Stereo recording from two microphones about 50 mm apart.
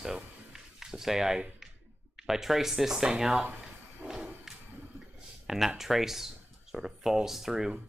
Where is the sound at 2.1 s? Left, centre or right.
Centre.